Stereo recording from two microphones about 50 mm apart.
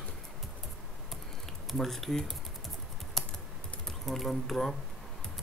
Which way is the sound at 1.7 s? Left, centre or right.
Centre.